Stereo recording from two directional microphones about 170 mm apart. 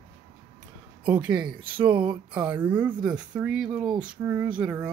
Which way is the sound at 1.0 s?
10° right (ahead or behind).